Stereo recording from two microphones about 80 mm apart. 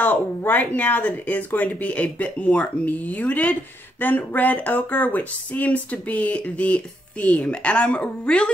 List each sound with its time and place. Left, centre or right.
0.0 s speech: left